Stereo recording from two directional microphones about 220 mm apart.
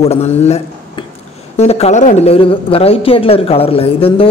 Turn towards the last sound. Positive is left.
turn(degrees=25)  # may be behind; listen again after turning